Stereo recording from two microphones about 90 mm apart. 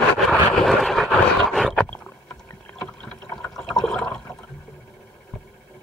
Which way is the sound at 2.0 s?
20° left (ahead or behind).